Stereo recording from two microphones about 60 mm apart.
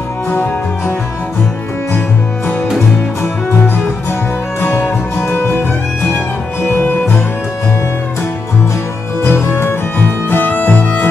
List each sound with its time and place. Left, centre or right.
4.6 s music: left
9.2 s music: left